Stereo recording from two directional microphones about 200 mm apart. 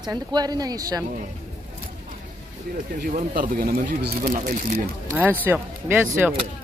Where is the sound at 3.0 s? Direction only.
45° right (ahead or behind).